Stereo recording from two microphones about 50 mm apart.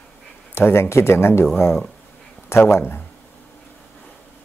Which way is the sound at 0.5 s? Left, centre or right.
Left.